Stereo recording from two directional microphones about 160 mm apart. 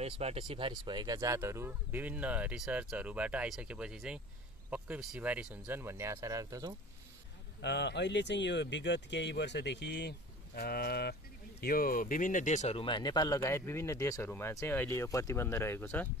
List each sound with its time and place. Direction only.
0.0 s speech: 40° right (ahead or behind); by 6.7 s 20° right (ahead or behind)
7.6 s speech: 90° left
11.6 s speech: 65° left (ahead or behind); by 16.1 s 15° left (ahead or behind)